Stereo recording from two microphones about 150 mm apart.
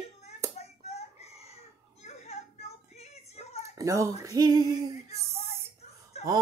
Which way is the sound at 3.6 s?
20° right (ahead or behind).